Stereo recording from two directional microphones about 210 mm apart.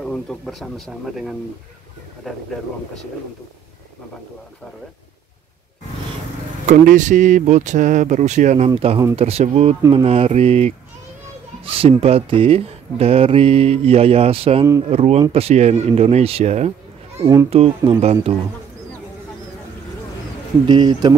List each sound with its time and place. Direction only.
0.0 s speech: 5° left (ahead or behind)
6.6 s speech: 35° right (ahead or behind)
9.8 s speech: 15° right (ahead or behind)
10.0 s speech: 30° right (ahead or behind)
17.2 s speech: 15° right (ahead or behind)
17.5 s speech: 30° right (ahead or behind)
20.6 s speech: 20° right (ahead or behind)